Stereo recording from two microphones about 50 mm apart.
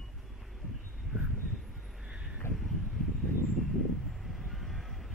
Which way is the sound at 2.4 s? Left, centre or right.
Left.